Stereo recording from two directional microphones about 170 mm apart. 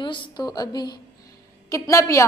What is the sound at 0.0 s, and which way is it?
A woman's voice, 30° left (ahead or behind).